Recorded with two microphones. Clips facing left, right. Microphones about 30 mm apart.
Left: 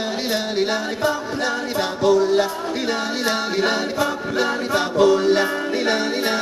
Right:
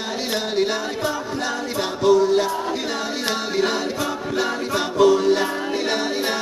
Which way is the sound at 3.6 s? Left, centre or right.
Left.